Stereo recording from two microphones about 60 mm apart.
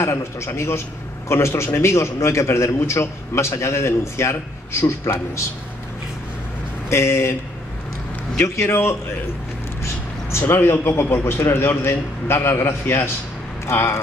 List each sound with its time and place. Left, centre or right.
0.0 s a man's voice: left
6.9 s a man's voice: left
8.5 s a man's voice: left
10.5 s a man's voice: left